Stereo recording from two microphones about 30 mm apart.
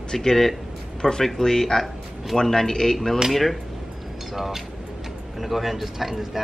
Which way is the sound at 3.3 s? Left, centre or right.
Centre.